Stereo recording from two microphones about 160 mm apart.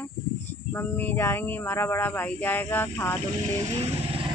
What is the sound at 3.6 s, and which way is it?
Vehicle, 40° right (ahead or behind).